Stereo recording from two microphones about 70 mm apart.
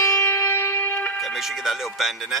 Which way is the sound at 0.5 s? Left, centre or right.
Left.